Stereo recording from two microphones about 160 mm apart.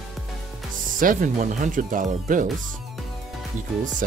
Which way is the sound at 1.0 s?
55° right (ahead or behind).